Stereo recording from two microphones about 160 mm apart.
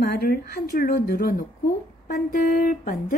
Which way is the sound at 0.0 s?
70° left (ahead or behind).